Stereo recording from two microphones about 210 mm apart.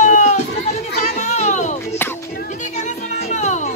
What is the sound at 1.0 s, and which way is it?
Children playing, 35° left (ahead or behind).